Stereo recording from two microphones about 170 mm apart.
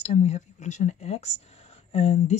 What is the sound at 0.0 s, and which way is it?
Speech, 40° left (ahead or behind).